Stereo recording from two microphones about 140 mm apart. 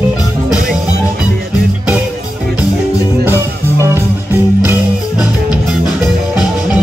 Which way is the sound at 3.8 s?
15° right (ahead or behind).